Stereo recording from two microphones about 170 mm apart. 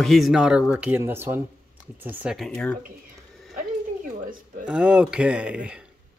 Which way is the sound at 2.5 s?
10° left (ahead or behind).